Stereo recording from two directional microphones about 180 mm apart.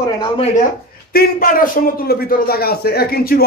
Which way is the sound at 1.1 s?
55° left (ahead or behind).